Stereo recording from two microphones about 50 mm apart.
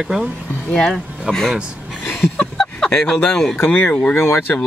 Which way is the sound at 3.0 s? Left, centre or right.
Centre.